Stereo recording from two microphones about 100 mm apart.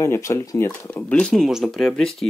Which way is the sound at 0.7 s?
15° left (ahead or behind).